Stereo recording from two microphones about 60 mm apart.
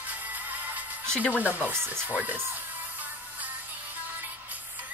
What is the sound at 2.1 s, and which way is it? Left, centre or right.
Speech, right.